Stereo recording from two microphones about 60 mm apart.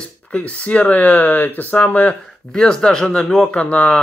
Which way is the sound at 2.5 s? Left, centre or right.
Centre.